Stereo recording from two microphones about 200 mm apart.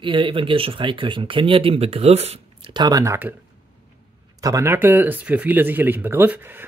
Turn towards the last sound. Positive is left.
turn(degrees=-10)  # may be behind; listen again after turning